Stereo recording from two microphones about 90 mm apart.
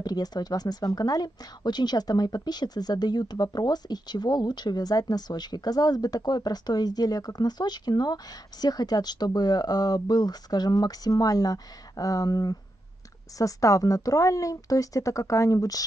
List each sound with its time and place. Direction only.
0.0 s speech: 50° left (ahead or behind)